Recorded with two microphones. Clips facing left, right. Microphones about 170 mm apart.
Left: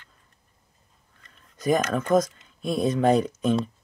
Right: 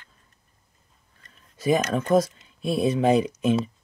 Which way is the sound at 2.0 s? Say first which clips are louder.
Right 1 dB; 30° right (ahead or behind).